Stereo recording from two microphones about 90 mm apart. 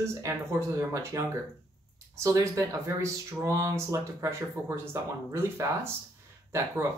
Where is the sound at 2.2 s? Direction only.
35° right (ahead or behind).